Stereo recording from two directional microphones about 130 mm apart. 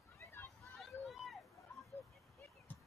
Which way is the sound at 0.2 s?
15° left (ahead or behind).